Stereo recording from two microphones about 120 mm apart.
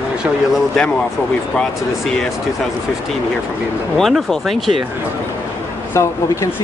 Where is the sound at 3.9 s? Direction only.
5° left (ahead or behind).